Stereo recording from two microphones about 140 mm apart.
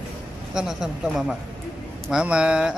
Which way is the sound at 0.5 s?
5° right (ahead or behind).